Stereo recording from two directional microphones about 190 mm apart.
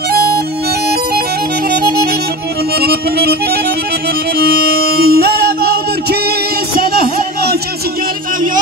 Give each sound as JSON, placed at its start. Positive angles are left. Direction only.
{"t": 0.1, "sound": "harmonica", "side_deg": -55}
{"t": 1.8, "sound": "music", "side_deg": -55}
{"t": 5.1, "sound": "music", "side_deg": -55}
{"t": 6.8, "sound": "music", "side_deg": -50}